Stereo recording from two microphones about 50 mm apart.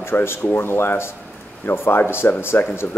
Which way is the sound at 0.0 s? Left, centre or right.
Left.